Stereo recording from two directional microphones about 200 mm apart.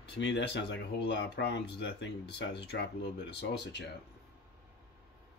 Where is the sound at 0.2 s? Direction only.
60° left (ahead or behind).